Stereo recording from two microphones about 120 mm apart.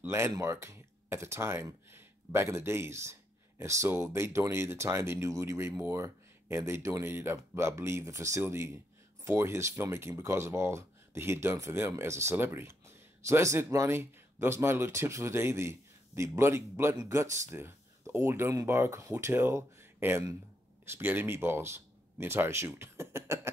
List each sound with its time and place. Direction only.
0.0 s speech: 20° right (ahead or behind)